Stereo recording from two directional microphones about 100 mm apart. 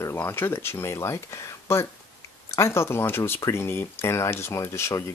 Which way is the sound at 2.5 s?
25° left (ahead or behind).